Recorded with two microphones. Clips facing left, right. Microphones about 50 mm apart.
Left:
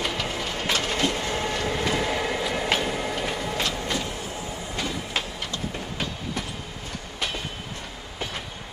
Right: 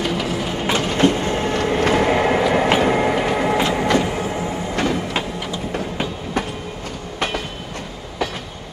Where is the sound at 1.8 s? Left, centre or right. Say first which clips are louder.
Right 11 dB; right.